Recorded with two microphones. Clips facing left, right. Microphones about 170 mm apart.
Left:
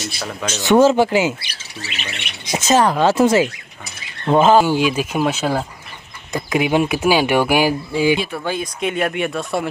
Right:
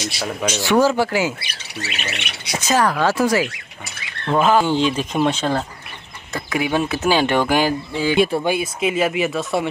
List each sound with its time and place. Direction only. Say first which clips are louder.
0.2 s speech: right 4 dB; 5° right (ahead or behind)
0.6 s speech: left 4 dB; 20° left (ahead or behind)
1.8 s squawk: right 2 dB; 70° right (ahead or behind)
2.6 s speech: left 3 dB; 25° left (ahead or behind)
4.6 s speech: left 1 dB; 10° left (ahead or behind)
6.3 s speech: left 4 dB; 20° left (ahead or behind)
8.5 s speech: right 2 dB; 5° right (ahead or behind)